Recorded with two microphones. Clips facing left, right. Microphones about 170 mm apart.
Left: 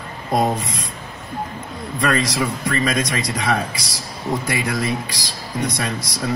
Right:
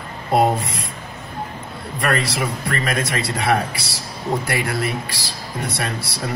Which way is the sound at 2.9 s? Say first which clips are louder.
Left 1 dB; 15° left (ahead or behind).